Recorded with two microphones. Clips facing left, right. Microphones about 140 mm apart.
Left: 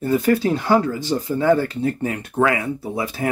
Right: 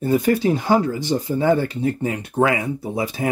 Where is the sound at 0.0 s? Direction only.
20° right (ahead or behind).